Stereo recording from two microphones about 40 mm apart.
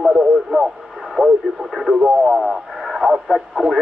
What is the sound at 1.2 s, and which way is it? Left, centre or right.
Radio, centre.